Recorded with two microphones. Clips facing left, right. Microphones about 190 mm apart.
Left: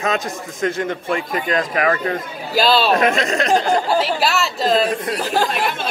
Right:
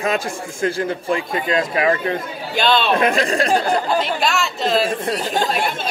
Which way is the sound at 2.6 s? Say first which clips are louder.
Left 1 dB; 35° left (ahead or behind).